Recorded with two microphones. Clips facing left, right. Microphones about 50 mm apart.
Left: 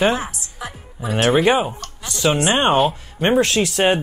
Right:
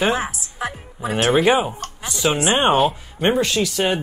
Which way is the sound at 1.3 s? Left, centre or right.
Centre.